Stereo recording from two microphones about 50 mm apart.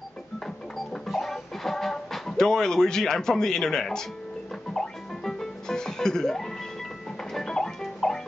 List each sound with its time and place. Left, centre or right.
1.0 s music: centre